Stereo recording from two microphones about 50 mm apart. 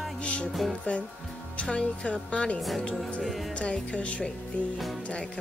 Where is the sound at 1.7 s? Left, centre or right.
Left.